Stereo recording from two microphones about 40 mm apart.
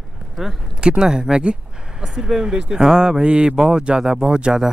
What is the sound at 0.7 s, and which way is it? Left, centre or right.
Speech, right.